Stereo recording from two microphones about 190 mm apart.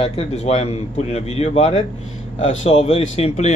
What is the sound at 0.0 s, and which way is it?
A man's voice, 35° left (ahead or behind).